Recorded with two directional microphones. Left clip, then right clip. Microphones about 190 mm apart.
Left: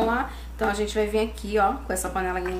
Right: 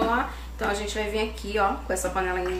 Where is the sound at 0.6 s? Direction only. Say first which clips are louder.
Left 3 dB; 50° left (ahead or behind).